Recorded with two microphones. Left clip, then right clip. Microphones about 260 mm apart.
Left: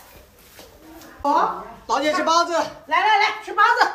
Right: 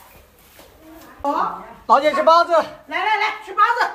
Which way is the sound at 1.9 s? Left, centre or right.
Centre.